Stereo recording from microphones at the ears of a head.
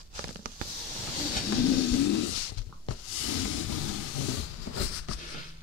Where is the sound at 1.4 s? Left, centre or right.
Left.